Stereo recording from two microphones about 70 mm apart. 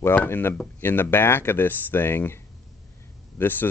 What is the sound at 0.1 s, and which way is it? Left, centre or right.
Speech, left.